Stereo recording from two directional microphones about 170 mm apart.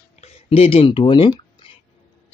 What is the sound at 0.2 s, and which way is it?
Speech, 35° left (ahead or behind).